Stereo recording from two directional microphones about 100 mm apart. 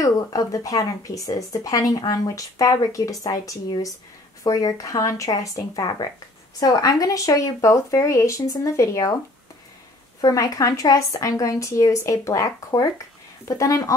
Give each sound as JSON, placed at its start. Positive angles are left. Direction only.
{"t": 0.0, "sound": "speech", "side_deg": 35}
{"t": 10.2, "sound": "speech", "side_deg": 35}